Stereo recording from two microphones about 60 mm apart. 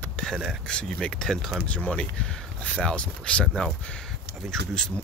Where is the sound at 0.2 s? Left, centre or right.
Centre.